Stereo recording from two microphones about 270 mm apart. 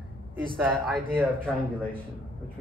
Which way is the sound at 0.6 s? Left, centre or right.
Centre.